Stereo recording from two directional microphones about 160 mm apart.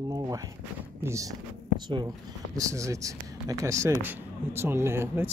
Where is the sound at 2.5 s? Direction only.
20° right (ahead or behind).